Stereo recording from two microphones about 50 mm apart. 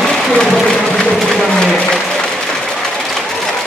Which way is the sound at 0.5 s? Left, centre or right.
Centre.